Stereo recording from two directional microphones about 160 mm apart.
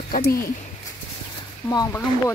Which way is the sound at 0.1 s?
70° left (ahead or behind).